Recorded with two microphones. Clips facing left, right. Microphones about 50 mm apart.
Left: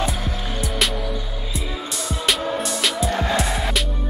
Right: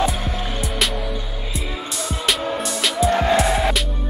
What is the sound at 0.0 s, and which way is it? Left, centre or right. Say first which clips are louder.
Music: right 3 dB; centre.